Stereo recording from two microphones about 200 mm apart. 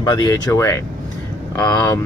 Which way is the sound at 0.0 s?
20° left (ahead or behind).